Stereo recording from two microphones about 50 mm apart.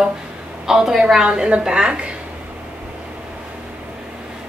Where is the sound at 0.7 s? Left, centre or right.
Centre.